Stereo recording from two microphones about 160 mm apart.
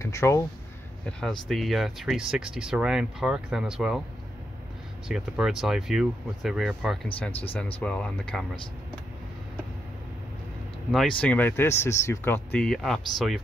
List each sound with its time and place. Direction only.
0.0 s speech: 20° left (ahead or behind)
1.5 s speech: centre (ahead or behind)
5.0 s speech: 5° right (ahead or behind)
10.9 s speech: 5° left (ahead or behind)